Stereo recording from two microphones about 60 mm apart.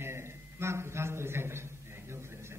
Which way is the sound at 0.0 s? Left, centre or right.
Right.